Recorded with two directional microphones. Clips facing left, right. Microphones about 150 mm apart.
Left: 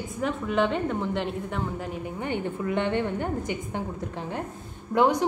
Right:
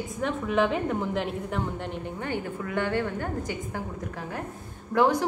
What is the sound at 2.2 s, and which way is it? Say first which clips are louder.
A woman's voice: left 3 dB; 20° left (ahead or behind).